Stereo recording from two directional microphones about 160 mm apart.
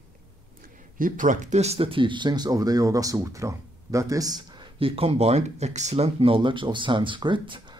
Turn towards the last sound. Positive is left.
turn(degrees=-30)  # may be behind; listen again after turning